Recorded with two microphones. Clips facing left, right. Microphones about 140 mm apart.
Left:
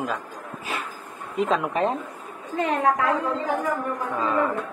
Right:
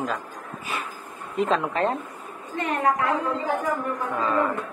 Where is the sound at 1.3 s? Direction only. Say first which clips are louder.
Even; centre (ahead or behind).